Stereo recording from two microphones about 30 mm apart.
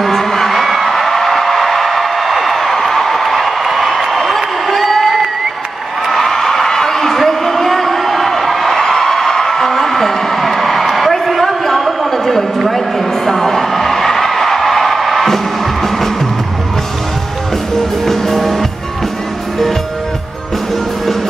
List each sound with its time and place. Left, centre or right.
0.0 s music: centre
4.1 s a sound: centre
4.6 s crowd: centre
6.0 s a sound: centre
15.2 s music: centre
18.0 s music: centre